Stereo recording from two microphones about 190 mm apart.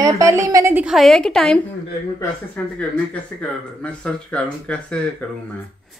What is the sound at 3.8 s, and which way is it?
A woman's voice, 5° left (ahead or behind).